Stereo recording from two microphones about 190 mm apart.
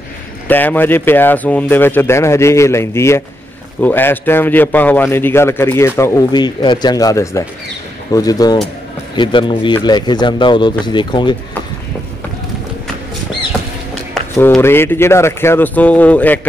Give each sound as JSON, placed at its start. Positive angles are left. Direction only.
{"t": 0.5, "sound": "a man's voice", "side_deg": 10}
{"t": 14.6, "sound": "speech", "side_deg": 10}